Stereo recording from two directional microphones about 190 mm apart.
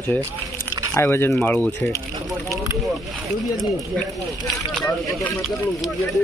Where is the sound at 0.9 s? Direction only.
10° left (ahead or behind).